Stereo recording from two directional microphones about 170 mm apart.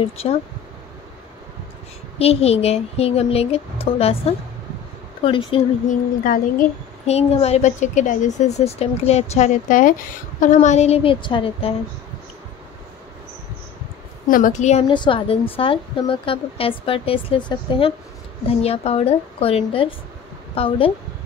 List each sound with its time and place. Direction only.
0.2 s a woman's voice: 35° left (ahead or behind)
2.1 s a woman's voice: 35° left (ahead or behind)
5.9 s a woman's voice: 50° left (ahead or behind)
7.1 s a woman's voice: 40° left (ahead or behind)
14.2 s a woman's voice: 50° left (ahead or behind)
14.9 s a woman's voice: 30° left (ahead or behind)